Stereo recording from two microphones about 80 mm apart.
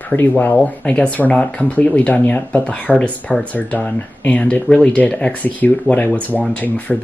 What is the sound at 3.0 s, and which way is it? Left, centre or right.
Speech, centre.